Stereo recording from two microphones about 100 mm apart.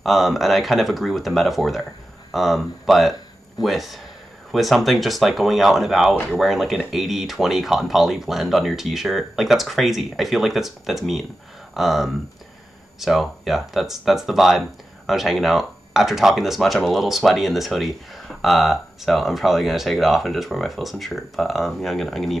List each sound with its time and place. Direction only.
0.0 s speech: centre (ahead or behind)